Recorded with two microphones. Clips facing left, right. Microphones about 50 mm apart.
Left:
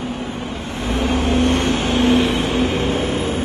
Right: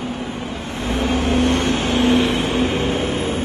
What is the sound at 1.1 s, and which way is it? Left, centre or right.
Vehicle, left.